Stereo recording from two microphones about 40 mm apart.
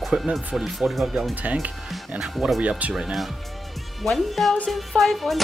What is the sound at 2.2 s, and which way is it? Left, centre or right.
Speech, centre.